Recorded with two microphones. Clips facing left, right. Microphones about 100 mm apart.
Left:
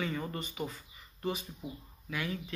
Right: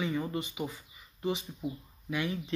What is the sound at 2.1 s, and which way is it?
Speech, 20° right (ahead or behind).